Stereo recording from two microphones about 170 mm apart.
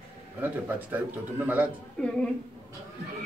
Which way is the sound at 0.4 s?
10° right (ahead or behind).